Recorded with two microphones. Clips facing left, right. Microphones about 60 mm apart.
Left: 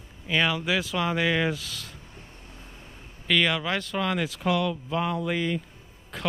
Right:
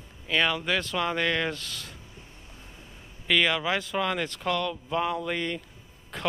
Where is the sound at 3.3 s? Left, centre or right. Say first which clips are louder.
Even; centre.